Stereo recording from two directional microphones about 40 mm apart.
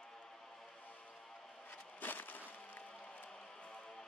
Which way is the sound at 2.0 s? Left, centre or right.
Left.